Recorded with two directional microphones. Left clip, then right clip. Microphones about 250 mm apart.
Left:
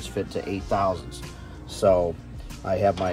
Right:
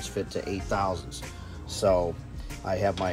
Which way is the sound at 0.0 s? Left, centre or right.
Centre.